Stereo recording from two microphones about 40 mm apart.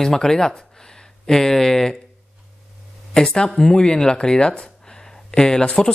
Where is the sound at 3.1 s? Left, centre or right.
Centre.